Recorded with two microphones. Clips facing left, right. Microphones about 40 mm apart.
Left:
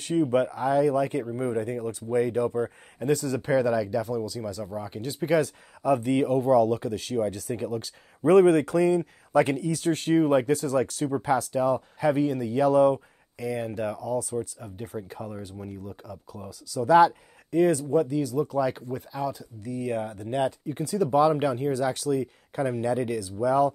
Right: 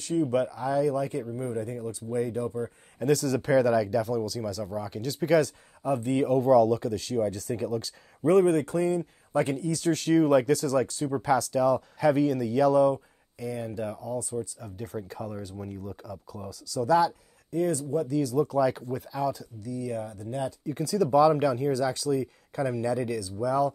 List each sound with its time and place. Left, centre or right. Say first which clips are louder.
0.0 s speech: left 2 dB; left
3.0 s speech: right 1 dB; centre
4.7 s speech: right 1 dB; left
5.8 s speech: left 4 dB; left
6.3 s speech: right 2 dB; centre
8.3 s speech: left 3 dB; left
9.7 s speech: even; left
12.6 s speech: left 2 dB; left
13.4 s speech: left 3 dB; left
15.0 s speech: even; centre
16.8 s speech: left 5 dB; left
18.0 s speech: right 1 dB; centre
19.6 s speech: left 4 dB; left
20.6 s speech: even; left